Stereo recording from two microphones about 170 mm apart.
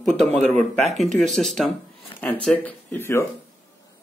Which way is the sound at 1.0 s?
45° right (ahead or behind).